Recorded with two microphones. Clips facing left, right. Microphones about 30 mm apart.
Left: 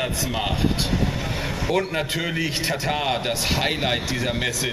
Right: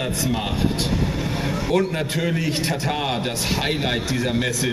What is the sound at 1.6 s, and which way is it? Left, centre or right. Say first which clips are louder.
Speech: right 1 dB; centre.